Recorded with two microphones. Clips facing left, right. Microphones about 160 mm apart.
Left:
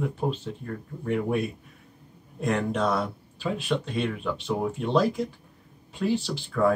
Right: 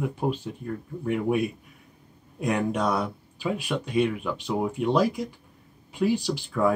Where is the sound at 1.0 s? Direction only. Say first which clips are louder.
Right 1 dB; 10° right (ahead or behind).